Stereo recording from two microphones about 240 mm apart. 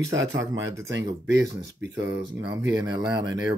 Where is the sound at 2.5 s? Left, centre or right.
Centre.